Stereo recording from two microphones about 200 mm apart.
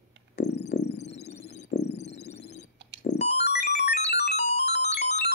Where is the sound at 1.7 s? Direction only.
55° left (ahead or behind).